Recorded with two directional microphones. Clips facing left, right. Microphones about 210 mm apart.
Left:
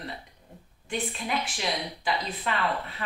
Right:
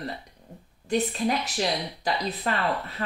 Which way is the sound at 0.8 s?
40° right (ahead or behind).